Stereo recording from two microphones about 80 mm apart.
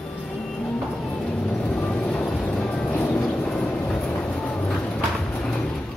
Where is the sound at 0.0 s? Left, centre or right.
Centre.